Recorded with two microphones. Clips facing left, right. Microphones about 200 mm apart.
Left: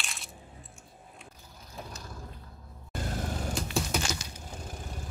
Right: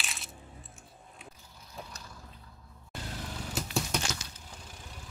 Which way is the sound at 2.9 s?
50° left (ahead or behind).